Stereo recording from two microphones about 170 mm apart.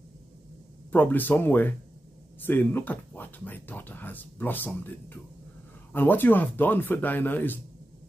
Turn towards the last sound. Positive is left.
turn(degrees=10)  # may be behind; listen again after turning